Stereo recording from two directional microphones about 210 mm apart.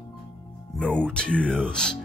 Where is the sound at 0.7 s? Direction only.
5° left (ahead or behind).